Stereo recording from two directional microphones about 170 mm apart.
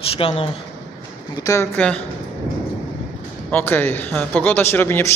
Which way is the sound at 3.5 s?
10° left (ahead or behind).